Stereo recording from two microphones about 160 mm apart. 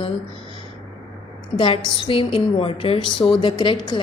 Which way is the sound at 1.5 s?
35° left (ahead or behind).